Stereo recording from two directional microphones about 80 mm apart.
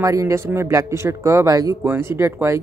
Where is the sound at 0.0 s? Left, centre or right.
Right.